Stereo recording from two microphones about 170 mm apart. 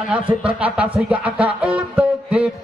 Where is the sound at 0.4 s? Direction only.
5° right (ahead or behind).